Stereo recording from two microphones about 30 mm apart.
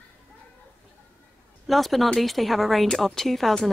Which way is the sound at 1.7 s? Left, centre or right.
Centre.